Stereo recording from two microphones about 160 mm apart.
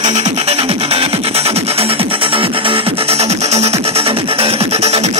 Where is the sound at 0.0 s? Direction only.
45° right (ahead or behind).